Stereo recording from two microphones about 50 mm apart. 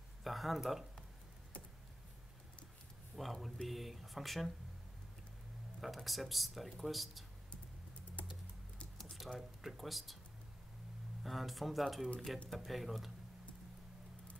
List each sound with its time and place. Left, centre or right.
0.2 s speech: centre
3.2 s speech: centre
5.8 s speech: centre
8.9 s squish: centre
9.6 s speech: centre
11.2 s speech: centre